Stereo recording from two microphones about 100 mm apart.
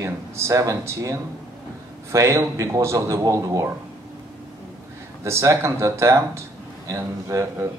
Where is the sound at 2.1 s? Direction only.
30° right (ahead or behind).